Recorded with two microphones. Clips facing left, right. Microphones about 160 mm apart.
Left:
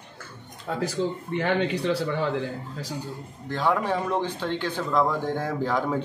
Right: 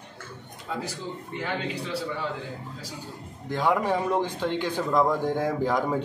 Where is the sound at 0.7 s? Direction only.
65° left (ahead or behind).